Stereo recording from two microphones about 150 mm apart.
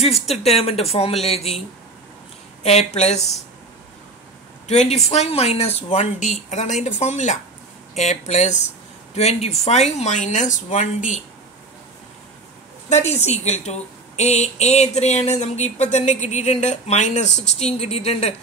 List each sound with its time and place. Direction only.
0.0 s speech: 45° left (ahead or behind)
2.6 s speech: 45° left (ahead or behind)
4.6 s speech: 45° left (ahead or behind)
13.2 s speech: 50° left (ahead or behind)